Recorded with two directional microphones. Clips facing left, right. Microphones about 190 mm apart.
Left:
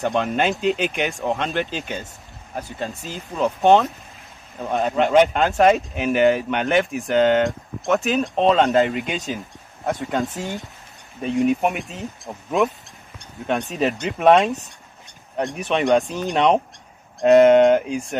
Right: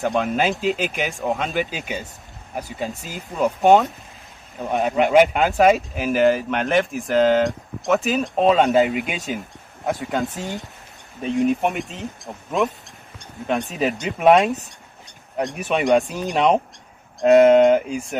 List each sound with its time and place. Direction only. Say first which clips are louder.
0.0 s speech: even; centre (ahead or behind)
5.0 s speech: right 1 dB; 10° right (ahead or behind)
11.2 s speech: even; centre (ahead or behind)